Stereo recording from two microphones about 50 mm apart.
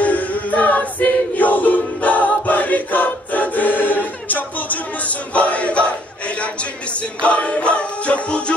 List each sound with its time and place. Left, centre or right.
0.0 s choir: left